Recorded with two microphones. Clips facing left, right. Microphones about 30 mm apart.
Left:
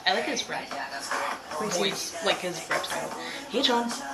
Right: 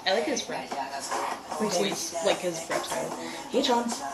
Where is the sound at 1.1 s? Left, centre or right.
Left.